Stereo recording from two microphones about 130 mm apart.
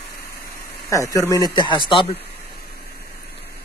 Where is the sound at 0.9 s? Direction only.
25° left (ahead or behind).